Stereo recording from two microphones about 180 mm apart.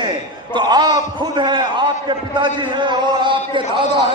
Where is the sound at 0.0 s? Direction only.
25° right (ahead or behind).